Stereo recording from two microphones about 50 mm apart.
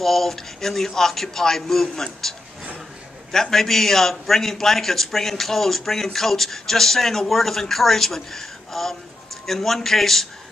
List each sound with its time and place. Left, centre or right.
0.0 s a man's voice: centre